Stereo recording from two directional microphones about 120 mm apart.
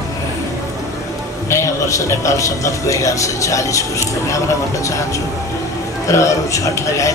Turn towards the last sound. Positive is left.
turn(degrees=25)  # may be behind; listen again after turning